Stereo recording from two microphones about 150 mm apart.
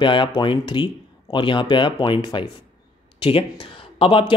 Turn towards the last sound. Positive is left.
turn(degrees=35)  # may be behind; listen again after turning